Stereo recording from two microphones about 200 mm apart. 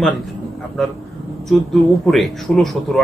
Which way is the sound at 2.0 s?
Centre (ahead or behind).